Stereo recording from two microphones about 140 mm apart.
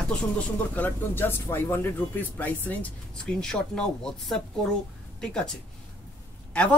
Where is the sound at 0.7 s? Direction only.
15° left (ahead or behind).